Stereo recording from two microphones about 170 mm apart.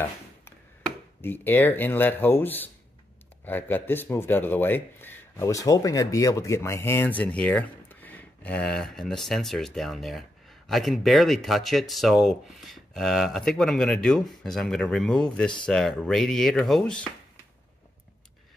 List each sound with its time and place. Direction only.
1.2 s speech: 10° left (ahead or behind)